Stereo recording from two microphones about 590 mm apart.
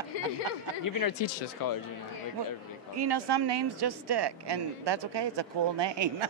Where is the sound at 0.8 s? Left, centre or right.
Left.